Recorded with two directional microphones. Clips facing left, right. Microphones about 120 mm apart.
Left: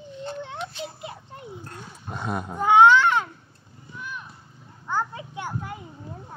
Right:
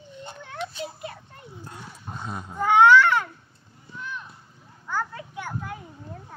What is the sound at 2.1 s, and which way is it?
Speech, 70° left (ahead or behind).